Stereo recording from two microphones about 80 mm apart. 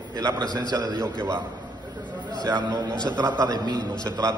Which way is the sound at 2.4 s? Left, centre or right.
Right.